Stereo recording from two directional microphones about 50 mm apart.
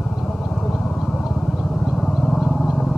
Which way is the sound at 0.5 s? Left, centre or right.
Centre.